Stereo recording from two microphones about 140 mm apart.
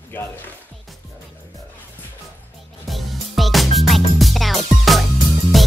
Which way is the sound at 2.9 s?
Centre (ahead or behind).